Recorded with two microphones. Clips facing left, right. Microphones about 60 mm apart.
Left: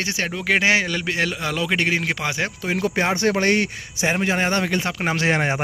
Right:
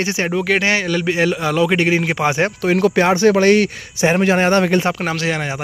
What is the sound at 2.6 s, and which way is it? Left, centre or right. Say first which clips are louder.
A man's voice: right 7 dB; right.